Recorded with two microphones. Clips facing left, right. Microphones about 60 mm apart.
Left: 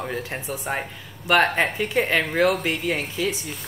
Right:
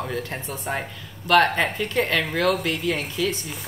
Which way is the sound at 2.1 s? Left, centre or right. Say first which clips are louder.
Left 3 dB; left.